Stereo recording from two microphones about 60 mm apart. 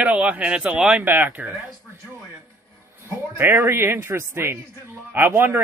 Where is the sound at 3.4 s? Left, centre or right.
Right.